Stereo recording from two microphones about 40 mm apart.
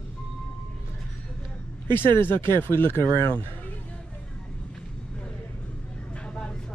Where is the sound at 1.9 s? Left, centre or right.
Left.